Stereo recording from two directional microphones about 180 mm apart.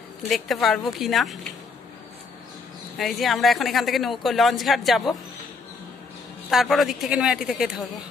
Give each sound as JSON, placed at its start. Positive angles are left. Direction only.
{"t": 0.3, "sound": "speech", "side_deg": 0}
{"t": 3.0, "sound": "speech", "side_deg": 0}
{"t": 6.5, "sound": "speech", "side_deg": 0}